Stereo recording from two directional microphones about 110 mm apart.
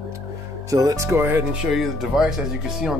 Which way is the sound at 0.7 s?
35° right (ahead or behind).